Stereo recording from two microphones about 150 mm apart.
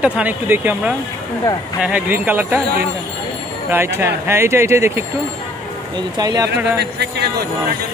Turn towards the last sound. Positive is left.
turn(degrees=-90)